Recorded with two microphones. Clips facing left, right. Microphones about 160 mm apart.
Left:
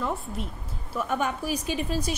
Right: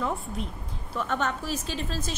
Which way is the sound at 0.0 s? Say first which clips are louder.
Even; centre (ahead or behind).